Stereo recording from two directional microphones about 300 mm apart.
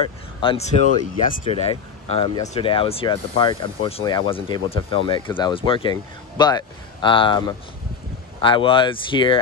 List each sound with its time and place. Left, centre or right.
0.4 s speech: centre